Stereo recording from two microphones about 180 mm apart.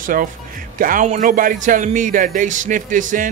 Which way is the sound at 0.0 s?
50° right (ahead or behind).